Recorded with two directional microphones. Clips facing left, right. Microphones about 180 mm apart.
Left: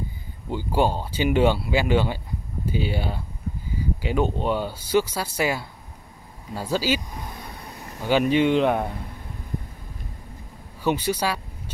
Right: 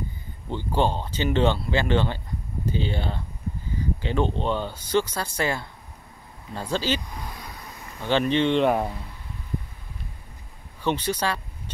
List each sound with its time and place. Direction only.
0.5 s speech: 10° left (ahead or behind)
7.2 s vehicle: 25° left (ahead or behind)
8.0 s speech: 10° left (ahead or behind)
10.8 s speech: 10° left (ahead or behind)